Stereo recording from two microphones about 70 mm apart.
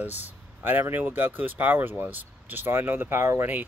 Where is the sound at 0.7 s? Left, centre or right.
Right.